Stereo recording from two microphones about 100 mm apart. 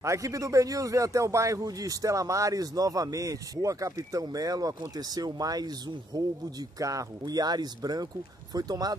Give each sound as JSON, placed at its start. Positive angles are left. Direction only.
{"t": 0.0, "sound": "speech", "side_deg": -30}